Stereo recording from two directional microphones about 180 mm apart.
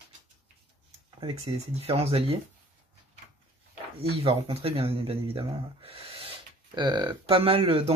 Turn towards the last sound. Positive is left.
turn(degrees=-30)  # may be behind; listen again after turning